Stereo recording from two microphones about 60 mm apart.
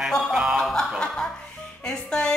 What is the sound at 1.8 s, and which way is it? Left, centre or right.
Speech, centre.